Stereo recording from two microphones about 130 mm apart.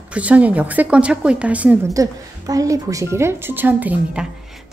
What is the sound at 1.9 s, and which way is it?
A woman's voice, 25° right (ahead or behind).